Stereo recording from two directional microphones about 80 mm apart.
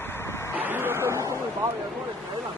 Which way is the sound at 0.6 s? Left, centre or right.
Right.